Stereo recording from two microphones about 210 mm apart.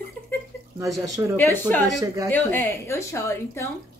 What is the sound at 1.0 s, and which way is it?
Speech, 15° right (ahead or behind).